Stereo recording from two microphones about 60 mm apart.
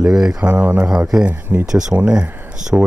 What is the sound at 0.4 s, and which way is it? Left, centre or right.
Speech, right.